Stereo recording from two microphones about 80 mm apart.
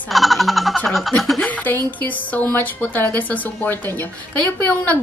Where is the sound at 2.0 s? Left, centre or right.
Left.